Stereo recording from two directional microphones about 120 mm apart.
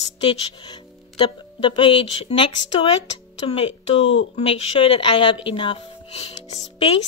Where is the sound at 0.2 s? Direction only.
50° left (ahead or behind).